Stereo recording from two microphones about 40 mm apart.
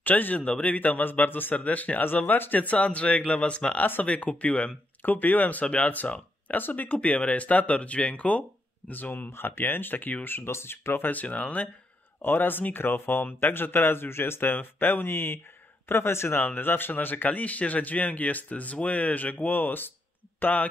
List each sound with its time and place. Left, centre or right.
0.0 s speech: left
0.4 s speech: left
5.0 s speech: left
6.5 s speech: left
6.9 s speech: left
8.9 s speech: left
9.3 s speech: left
10.2 s speech: left
11.1 s speech: left
12.2 s speech: left
16.5 s speech: left
19.5 s speech: left